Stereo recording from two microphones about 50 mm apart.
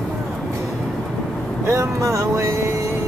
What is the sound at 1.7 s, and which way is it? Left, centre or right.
Speech, right.